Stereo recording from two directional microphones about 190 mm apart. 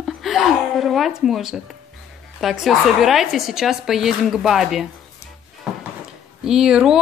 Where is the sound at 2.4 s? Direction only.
Centre (ahead or behind).